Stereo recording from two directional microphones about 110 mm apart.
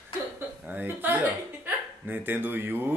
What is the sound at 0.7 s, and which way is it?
Speech, 15° right (ahead or behind).